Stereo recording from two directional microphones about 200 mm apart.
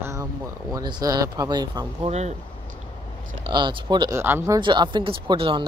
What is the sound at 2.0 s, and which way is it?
Speech, 35° right (ahead or behind).